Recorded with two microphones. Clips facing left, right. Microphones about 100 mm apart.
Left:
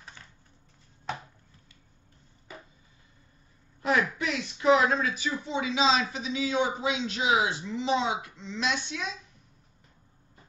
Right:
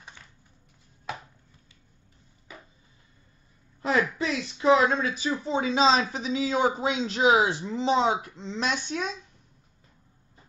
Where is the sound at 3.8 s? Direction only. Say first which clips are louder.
Right 1 dB; 30° right (ahead or behind).